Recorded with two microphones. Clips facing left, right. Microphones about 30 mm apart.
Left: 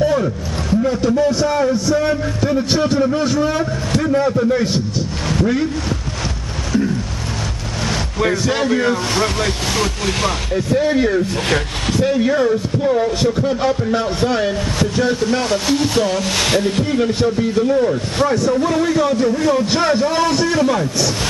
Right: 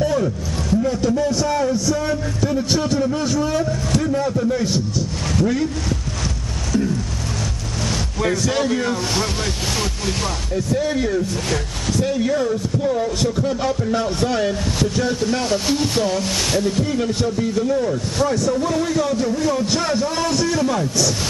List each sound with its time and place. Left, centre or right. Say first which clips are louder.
0.0 s a man's voice: left 3 dB; centre
8.2 s a man's voice: left 2 dB; centre
9.1 s speech: left 4 dB; left
10.0 s speech: left 5 dB; left
10.7 s a man's voice: left 5 dB; left
11.4 s speech: left 5 dB; left
12.0 s a man's voice: left 4 dB; left
16.2 s speech: left 3 dB; left
16.8 s a man's voice: left 4 dB; left